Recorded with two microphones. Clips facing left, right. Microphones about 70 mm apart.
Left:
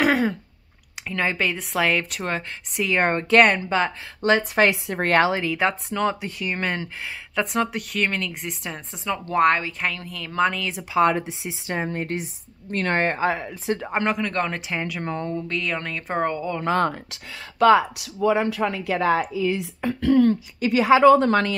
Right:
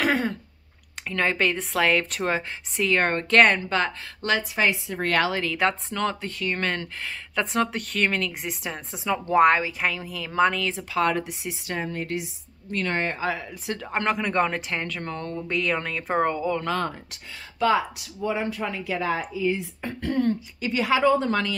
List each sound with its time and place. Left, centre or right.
0.0 s a sound: centre
1.0 s a woman's voice: centre
3.0 s speech: centre
4.4 s a woman's voice: left
5.1 s speech: left
5.4 s a woman's voice: centre
10.8 s speech: centre
11.9 s speech: left
13.9 s a woman's voice: centre
14.2 s a woman's voice: centre
14.8 s speech: centre
15.5 s a woman's voice: centre
17.1 s a woman's voice: left